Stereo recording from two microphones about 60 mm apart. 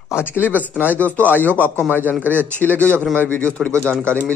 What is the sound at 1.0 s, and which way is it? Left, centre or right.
A man's voice, left.